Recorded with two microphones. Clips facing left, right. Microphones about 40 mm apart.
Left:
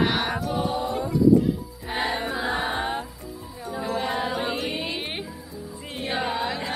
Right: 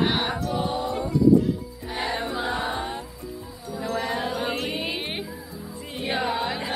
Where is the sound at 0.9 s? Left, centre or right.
Centre.